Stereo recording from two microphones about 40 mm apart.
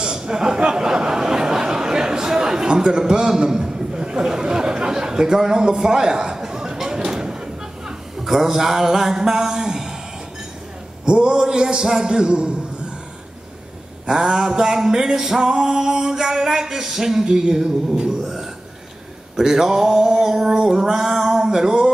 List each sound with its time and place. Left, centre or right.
0.0 s speech: centre
7.0 s a sound: right
8.2 s music: centre
11.1 s a man's voice: right
14.0 s music: centre
20.5 s a man's voice: centre
20.8 s music: centre